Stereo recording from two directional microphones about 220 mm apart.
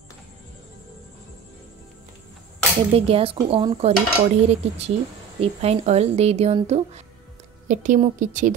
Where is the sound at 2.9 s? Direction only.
25° right (ahead or behind).